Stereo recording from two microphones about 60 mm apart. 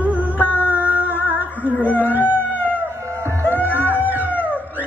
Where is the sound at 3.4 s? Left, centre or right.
Left.